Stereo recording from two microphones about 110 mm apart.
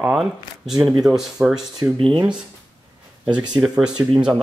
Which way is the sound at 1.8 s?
25° right (ahead or behind).